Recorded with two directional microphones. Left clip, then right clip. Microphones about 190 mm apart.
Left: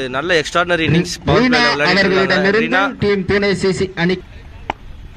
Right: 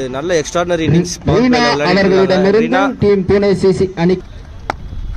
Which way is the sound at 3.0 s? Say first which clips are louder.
Right 4 dB; 55° right (ahead or behind).